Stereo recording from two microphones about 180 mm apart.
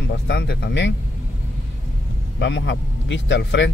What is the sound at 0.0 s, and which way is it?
Speech, 70° left (ahead or behind).